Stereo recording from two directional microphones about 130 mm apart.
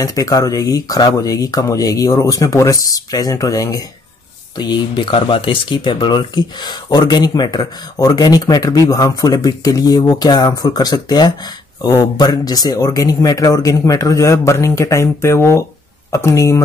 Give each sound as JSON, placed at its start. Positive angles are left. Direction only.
{"t": 0.0, "sound": "speech", "side_deg": 25}
{"t": 4.6, "sound": "speech", "side_deg": 35}